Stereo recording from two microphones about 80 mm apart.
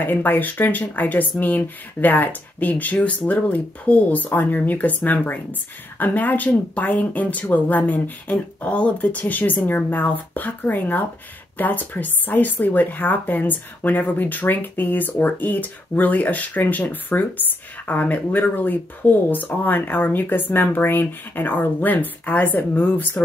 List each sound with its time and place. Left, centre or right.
0.0 s speech: left